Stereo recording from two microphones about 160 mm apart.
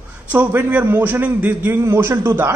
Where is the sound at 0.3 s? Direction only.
10° right (ahead or behind).